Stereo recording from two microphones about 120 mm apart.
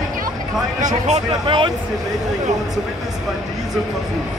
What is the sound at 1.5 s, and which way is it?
Speech, 40° right (ahead or behind).